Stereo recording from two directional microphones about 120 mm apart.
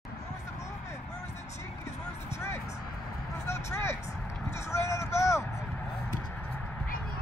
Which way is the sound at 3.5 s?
20° left (ahead or behind).